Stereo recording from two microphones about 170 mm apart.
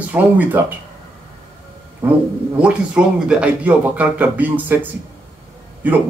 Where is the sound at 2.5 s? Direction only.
5° right (ahead or behind).